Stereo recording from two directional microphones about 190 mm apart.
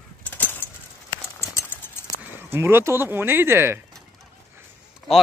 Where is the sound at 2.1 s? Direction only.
10° right (ahead or behind).